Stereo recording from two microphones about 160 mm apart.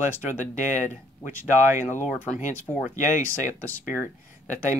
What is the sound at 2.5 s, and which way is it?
Speech, 10° left (ahead or behind).